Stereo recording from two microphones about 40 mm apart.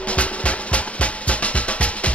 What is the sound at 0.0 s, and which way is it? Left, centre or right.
Music, left.